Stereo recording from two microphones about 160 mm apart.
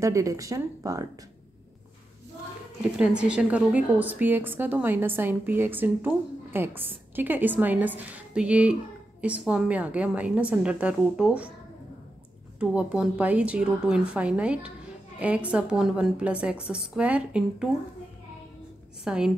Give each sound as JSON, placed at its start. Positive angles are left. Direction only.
{"t": 0.0, "sound": "speech", "side_deg": -20}
{"t": 3.0, "sound": "a woman's voice", "side_deg": -5}
{"t": 12.5, "sound": "a woman's voice", "side_deg": -5}
{"t": 19.0, "sound": "a woman's voice", "side_deg": -5}